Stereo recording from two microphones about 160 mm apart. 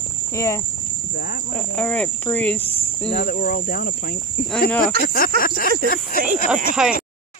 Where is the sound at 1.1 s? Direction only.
70° left (ahead or behind).